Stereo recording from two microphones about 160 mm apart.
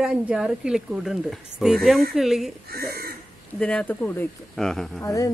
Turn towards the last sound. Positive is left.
turn(degrees=20)  # may be behind; listen again after turning